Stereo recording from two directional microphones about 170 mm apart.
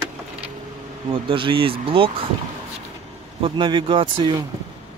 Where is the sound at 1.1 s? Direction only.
30° right (ahead or behind).